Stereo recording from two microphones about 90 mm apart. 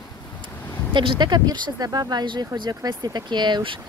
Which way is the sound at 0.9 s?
70° right (ahead or behind).